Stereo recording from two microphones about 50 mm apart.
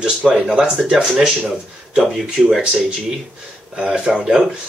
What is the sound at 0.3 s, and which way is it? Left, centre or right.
Mantra, centre.